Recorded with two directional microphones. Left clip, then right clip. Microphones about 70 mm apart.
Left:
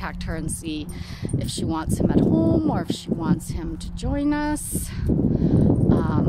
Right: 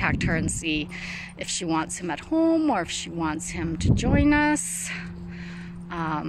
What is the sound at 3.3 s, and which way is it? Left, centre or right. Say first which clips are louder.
Speech: right 1 dB; centre.